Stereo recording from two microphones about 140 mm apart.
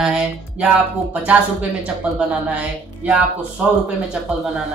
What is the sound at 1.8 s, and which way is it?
Speech, 10° right (ahead or behind).